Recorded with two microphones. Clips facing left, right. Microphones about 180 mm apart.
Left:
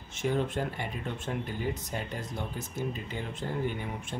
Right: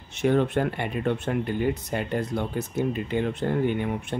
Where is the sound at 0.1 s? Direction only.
65° right (ahead or behind).